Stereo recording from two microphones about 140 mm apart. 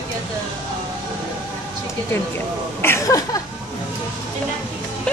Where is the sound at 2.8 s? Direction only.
20° left (ahead or behind).